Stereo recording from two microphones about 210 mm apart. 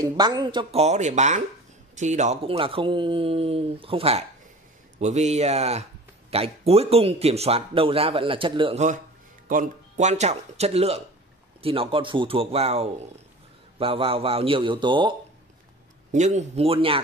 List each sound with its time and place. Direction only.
0.0 s speech: 20° right (ahead or behind)
16.1 s speech: 35° right (ahead or behind)